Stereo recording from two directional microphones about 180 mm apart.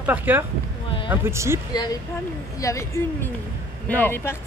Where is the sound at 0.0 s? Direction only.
10° right (ahead or behind).